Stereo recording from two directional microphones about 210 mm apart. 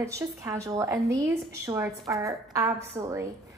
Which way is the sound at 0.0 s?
15° right (ahead or behind).